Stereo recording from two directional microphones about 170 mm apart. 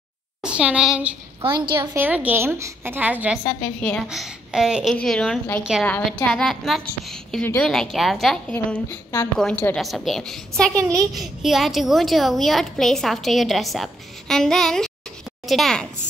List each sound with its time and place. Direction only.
0.4 s a woman's voice: 5° right (ahead or behind)
1.4 s a woman's voice: 25° right (ahead or behind)
2.0 s a woman's voice: 10° right (ahead or behind)
3.4 s a woman's voice: 10° left (ahead or behind)
4.1 s a woman's voice: 5° right (ahead or behind)
10.7 s a woman's voice: 20° right (ahead or behind)
11.1 s a woman's voice: centre (ahead or behind)